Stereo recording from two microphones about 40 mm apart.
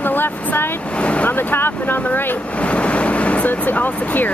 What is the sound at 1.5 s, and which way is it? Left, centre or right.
Speech, left.